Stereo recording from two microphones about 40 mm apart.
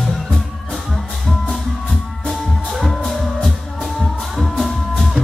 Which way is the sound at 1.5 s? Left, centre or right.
Centre.